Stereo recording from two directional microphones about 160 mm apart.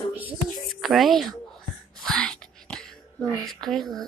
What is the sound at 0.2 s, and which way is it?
Whispering, 5° right (ahead or behind).